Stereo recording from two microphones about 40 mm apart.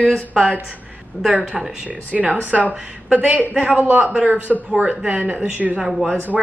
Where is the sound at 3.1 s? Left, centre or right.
Right.